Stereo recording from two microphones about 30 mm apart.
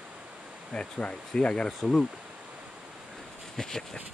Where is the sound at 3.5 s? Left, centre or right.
Centre.